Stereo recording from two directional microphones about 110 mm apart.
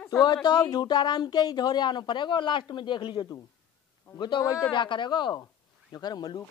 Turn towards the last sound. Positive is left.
turn(degrees=40)  # may be behind; listen again after turning